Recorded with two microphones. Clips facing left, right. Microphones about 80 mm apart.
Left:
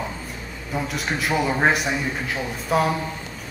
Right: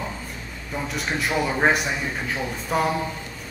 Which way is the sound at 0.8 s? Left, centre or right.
Centre.